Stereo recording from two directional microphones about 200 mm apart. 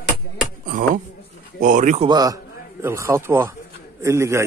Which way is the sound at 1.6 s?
40° right (ahead or behind).